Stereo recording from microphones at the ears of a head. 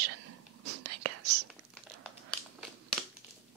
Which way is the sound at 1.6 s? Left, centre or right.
Right.